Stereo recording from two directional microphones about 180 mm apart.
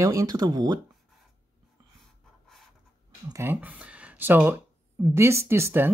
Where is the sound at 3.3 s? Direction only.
15° right (ahead or behind).